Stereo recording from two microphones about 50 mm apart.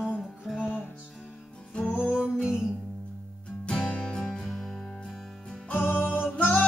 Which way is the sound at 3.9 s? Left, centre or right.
Left.